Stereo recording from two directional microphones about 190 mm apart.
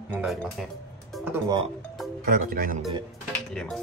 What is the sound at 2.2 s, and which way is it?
Music, 50° right (ahead or behind).